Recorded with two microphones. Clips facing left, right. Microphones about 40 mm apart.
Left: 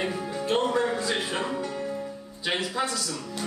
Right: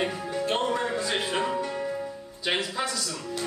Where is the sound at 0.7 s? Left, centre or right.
Centre.